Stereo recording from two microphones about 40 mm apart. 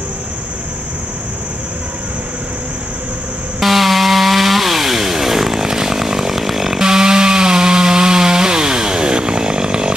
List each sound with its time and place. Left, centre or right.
3.5 s chainsaw: centre
6.8 s chainsaw: centre